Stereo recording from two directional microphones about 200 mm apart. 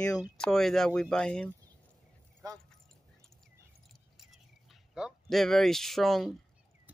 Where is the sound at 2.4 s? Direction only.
15° right (ahead or behind).